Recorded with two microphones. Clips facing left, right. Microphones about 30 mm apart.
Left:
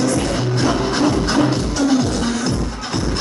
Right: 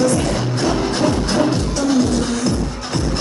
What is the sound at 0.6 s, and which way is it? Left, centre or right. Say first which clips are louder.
Music: left 1 dB; centre.